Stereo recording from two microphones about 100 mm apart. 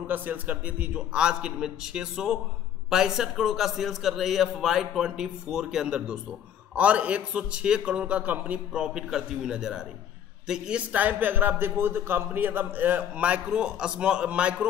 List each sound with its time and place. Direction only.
0.0 s a man's voice: 15° right (ahead or behind)